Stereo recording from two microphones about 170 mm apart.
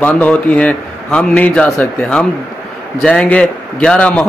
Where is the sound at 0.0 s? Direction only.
10° left (ahead or behind).